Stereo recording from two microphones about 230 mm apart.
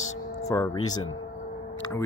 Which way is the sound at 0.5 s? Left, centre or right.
Centre.